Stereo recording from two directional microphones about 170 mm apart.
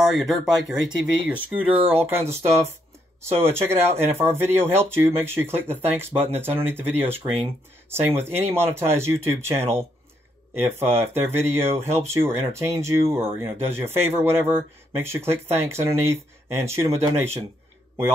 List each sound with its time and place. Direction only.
0.1 s speech: centre (ahead or behind)
1.7 s speech: 35° right (ahead or behind)
2.2 s speech: 15° right (ahead or behind)